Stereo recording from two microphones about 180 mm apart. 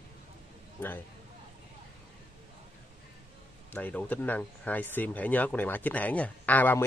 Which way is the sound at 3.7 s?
10° left (ahead or behind).